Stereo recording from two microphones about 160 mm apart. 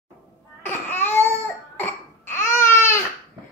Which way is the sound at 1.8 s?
10° left (ahead or behind).